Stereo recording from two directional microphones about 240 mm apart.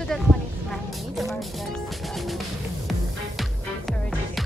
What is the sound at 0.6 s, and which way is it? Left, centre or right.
Vehicle, centre.